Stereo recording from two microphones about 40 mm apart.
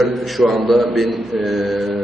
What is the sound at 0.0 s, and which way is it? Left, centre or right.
A man's voice, centre.